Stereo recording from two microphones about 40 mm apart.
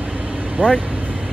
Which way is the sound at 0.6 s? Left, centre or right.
Left.